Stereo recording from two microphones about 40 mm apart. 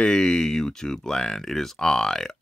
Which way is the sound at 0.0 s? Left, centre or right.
Centre.